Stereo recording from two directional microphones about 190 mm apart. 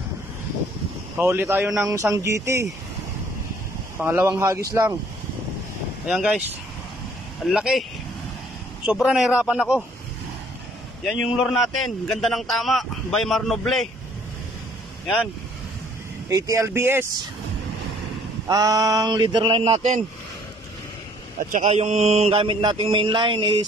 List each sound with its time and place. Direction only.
1.1 s speech: 10° right (ahead or behind)
4.0 s speech: 10° right (ahead or behind)
6.0 s a man's voice: 5° right (ahead or behind)
7.4 s a man's voice: centre (ahead or behind)
8.8 s a man's voice: 5° right (ahead or behind)
11.1 s a man's voice: centre (ahead or behind)
16.3 s speech: 15° right (ahead or behind)
18.5 s speech: 20° right (ahead or behind)
21.5 s speech: 40° right (ahead or behind)